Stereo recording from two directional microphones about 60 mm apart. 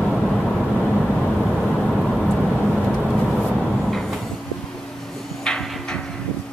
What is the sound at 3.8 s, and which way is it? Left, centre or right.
Train, centre.